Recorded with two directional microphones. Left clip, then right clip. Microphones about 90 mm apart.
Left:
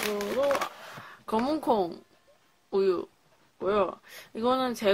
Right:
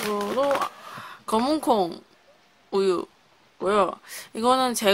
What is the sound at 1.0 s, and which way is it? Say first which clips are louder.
Speech: right 5 dB; 25° right (ahead or behind).